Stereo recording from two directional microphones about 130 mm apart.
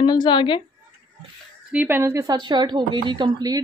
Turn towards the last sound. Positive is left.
turn(degrees=-30)  # may be behind; listen again after turning